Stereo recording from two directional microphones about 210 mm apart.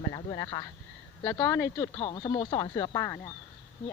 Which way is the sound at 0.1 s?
20° left (ahead or behind).